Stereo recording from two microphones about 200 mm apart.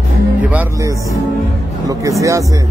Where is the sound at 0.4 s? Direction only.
10° right (ahead or behind).